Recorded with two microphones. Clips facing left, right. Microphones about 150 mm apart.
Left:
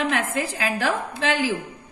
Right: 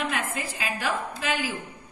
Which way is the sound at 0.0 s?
90° left.